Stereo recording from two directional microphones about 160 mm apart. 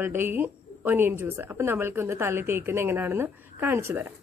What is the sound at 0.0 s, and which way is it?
A woman's voice, 15° right (ahead or behind).